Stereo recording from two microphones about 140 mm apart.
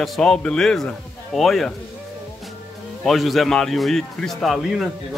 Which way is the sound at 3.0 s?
Centre (ahead or behind).